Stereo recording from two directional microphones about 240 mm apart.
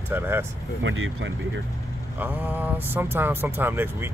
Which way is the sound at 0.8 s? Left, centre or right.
Right.